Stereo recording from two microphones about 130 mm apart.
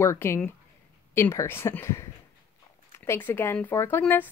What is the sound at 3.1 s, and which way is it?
A woman's voice, 15° left (ahead or behind).